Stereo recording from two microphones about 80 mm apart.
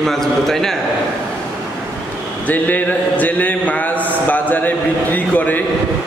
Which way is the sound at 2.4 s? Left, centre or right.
Left.